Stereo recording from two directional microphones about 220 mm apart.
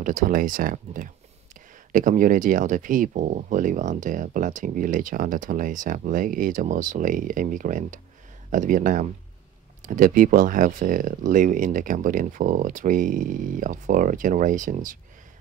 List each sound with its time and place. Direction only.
0.0 s speech: 40° right (ahead or behind)